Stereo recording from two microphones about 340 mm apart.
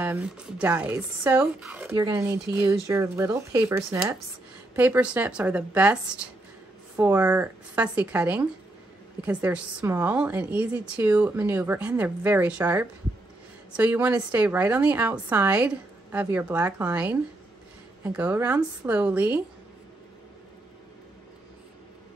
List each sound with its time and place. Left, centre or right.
0.0 s a woman's voice: centre